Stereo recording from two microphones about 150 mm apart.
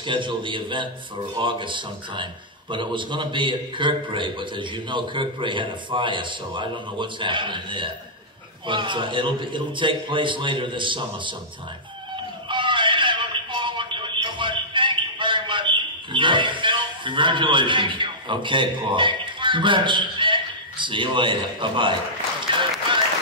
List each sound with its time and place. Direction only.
0.0 s a man's voice: 30° right (ahead or behind)
12.4 s neigh: 35° right (ahead or behind)